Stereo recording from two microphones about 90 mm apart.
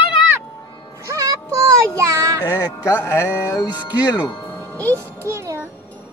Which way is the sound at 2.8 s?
35° left (ahead or behind).